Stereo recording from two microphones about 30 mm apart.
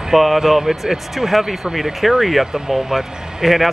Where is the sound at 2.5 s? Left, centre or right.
Right.